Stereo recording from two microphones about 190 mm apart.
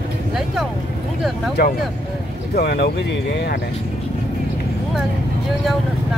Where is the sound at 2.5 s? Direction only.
60° left (ahead or behind).